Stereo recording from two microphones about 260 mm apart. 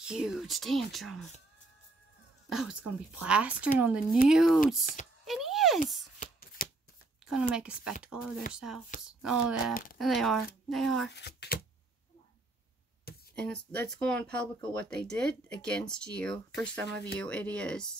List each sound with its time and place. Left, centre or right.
0.0 s speech: centre
2.5 s speech: centre
5.2 s a sound: centre
6.6 s shuffling cards: left
7.8 s speech: centre
11.1 s speech: left
13.3 s speech: centre